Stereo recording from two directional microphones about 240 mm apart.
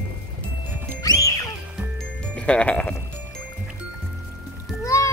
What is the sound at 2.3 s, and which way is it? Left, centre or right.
Speech, centre.